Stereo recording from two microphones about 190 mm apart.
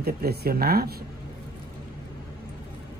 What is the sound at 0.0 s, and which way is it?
Speech, 55° right (ahead or behind).